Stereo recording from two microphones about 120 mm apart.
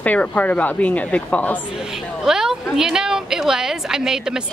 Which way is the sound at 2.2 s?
5° right (ahead or behind).